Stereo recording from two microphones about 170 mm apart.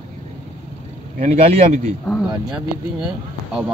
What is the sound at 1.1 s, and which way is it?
Speech, 40° right (ahead or behind).